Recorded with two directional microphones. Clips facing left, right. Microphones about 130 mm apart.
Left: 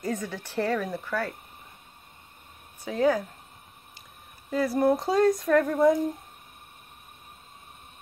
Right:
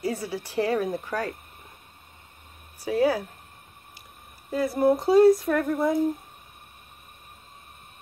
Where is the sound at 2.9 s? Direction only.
10° right (ahead or behind).